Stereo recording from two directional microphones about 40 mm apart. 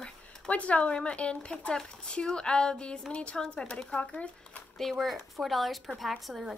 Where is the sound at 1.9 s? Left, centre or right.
Centre.